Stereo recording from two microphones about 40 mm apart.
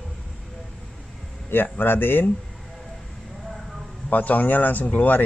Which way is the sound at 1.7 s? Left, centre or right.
Left.